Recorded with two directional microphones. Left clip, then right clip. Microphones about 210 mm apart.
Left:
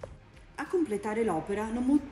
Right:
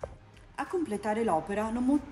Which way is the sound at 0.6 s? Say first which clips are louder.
Left 2 dB; 15° right (ahead or behind).